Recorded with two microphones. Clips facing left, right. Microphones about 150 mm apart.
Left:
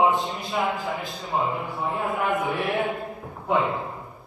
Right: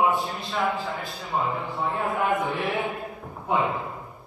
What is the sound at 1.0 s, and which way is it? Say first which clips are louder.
A man's voice: left 1 dB; centre (ahead or behind).